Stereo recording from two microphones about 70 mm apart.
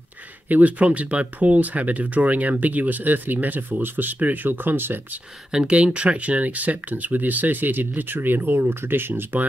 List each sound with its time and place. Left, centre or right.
0.5 s speech: right
5.5 s speech: centre; by 9.5 s right